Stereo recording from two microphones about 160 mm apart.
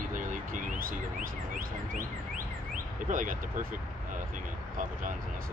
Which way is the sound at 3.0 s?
55° right (ahead or behind).